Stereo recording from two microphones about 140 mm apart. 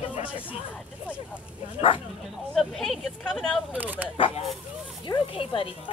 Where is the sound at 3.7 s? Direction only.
10° right (ahead or behind).